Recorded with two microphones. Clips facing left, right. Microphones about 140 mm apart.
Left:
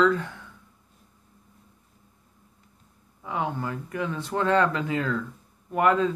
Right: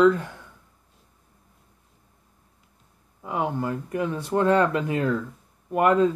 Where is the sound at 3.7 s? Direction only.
35° right (ahead or behind).